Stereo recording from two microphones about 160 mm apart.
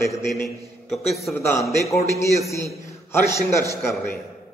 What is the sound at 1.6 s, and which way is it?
A man's voice, 20° left (ahead or behind).